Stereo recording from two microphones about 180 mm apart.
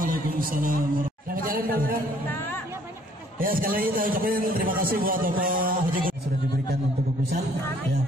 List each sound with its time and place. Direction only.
0.0 s a man's voice: 50° right (ahead or behind)
3.3 s a man's voice: 50° right (ahead or behind)